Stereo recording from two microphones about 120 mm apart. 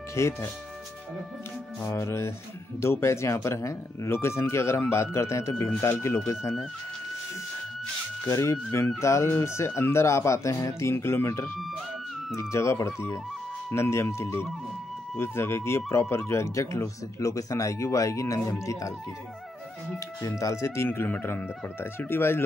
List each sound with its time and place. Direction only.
0.1 s speech: 25° left (ahead or behind)
1.8 s speech: 25° left (ahead or behind)
8.3 s speech: 25° left (ahead or behind)
20.2 s speech: 25° left (ahead or behind)